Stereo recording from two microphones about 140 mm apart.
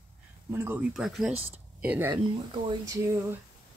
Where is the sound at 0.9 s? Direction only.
5° right (ahead or behind).